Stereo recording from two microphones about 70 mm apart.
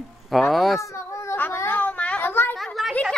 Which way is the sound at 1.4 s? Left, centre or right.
Left.